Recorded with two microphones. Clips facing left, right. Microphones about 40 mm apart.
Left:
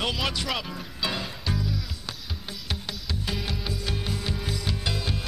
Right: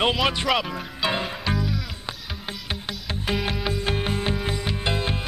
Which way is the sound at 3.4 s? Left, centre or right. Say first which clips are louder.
Right 6 dB; right.